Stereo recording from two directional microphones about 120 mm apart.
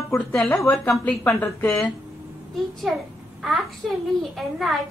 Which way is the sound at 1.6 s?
Centre (ahead or behind).